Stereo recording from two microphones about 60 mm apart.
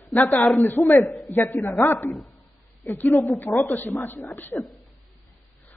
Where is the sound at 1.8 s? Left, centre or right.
Left.